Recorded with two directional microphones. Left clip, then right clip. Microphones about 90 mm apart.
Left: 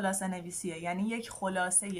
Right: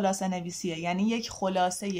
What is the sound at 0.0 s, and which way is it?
A woman's voice, 20° right (ahead or behind).